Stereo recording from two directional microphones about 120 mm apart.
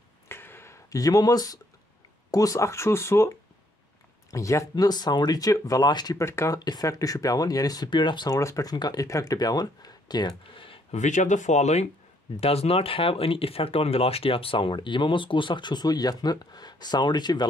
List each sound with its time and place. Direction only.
0.3 s a sound: 20° left (ahead or behind)
2.3 s speech: 30° left (ahead or behind)
6.2 s speech: 25° left (ahead or behind); by 8.4 s 40° left (ahead or behind)
8.4 s speech: 25° left (ahead or behind); by 10.8 s 45° left (ahead or behind)
10.9 s speech: 90° left; by 11.9 s 65° left (ahead or behind)
12.4 s speech: 55° left (ahead or behind); by 17.5 s 35° left (ahead or behind)